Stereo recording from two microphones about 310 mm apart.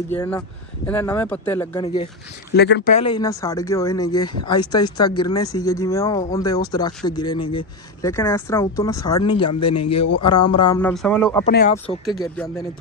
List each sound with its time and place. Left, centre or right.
0.1 s speech: centre
2.5 s speech: left; by 9.5 s centre
9.5 s speech: left
9.8 s speech: centre
10.9 s speech: centre
11.4 s speech: left